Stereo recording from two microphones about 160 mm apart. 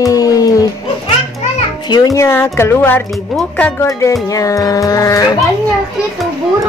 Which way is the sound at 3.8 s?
20° left (ahead or behind).